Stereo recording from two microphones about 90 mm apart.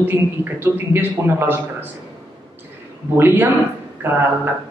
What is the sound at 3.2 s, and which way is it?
Speech, 25° right (ahead or behind).